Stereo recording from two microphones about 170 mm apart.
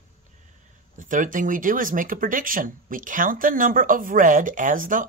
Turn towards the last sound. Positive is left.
turn(degrees=-50)  # may be behind; listen again after turning